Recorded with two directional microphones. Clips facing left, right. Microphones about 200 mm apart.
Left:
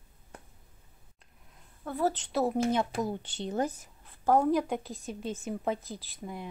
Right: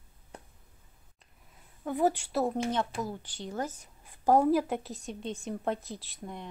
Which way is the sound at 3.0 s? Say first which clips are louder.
Left 4 dB; 25° left (ahead or behind).